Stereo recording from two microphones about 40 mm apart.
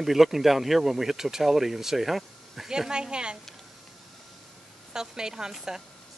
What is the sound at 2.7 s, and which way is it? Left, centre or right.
Speech, centre.